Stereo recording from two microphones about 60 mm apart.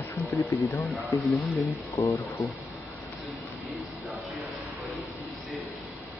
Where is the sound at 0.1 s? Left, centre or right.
Left.